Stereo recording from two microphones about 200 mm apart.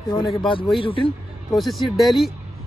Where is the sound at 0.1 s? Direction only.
25° left (ahead or behind).